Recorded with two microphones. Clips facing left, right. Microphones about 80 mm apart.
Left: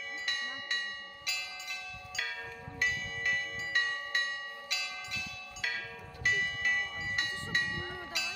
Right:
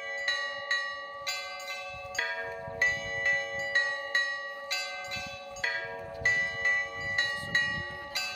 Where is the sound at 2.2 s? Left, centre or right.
Right.